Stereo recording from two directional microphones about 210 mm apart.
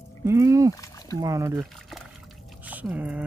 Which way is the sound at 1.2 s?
15° right (ahead or behind).